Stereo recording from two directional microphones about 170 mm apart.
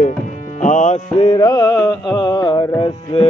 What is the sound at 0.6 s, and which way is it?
Music, 45° left (ahead or behind).